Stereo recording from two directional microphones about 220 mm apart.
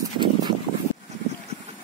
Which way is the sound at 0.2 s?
20° right (ahead or behind).